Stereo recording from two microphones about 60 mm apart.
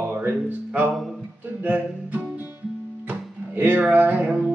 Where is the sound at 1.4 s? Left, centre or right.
Right.